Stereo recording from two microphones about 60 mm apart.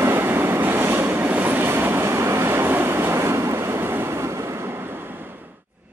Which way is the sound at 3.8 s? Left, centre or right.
Right.